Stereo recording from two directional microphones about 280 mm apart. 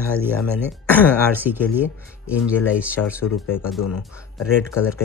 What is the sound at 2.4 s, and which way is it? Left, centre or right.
Speech, centre.